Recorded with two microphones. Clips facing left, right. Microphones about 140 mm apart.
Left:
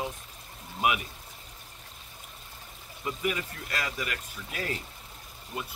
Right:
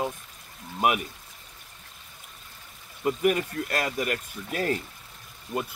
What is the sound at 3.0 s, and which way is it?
Speech, 45° right (ahead or behind).